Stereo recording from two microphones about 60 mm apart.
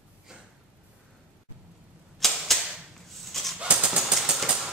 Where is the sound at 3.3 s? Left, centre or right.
Centre.